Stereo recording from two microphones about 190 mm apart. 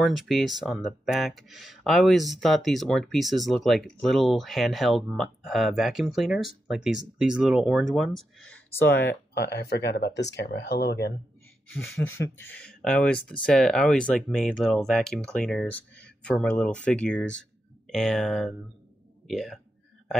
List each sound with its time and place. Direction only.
0.0 s speech: centre (ahead or behind)
8.9 s speech: 65° left (ahead or behind)
11.9 s speech: 90° left
12.2 s speech: 10° left (ahead or behind)